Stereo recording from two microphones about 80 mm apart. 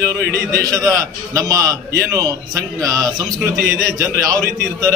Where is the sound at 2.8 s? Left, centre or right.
Right.